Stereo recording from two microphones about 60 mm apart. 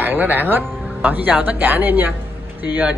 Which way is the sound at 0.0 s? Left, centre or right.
Right.